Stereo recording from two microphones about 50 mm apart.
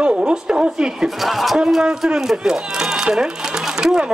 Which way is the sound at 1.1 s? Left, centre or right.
Centre.